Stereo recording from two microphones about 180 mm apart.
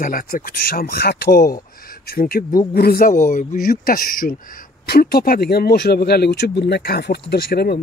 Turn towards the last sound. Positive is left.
turn(degrees=60)  # may be behind; listen again after turning